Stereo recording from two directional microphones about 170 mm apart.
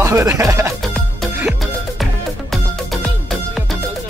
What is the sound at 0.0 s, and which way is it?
Speech, 20° right (ahead or behind).